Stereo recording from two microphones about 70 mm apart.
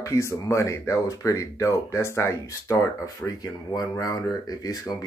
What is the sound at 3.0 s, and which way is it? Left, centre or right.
Speech, left.